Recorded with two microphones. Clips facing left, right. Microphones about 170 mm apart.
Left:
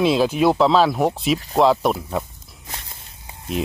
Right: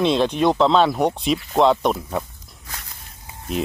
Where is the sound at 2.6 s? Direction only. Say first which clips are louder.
Left 2 dB; 25° left (ahead or behind).